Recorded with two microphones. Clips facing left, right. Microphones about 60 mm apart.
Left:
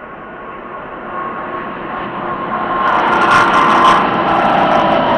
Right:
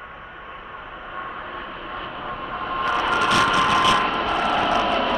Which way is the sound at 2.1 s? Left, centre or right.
Left.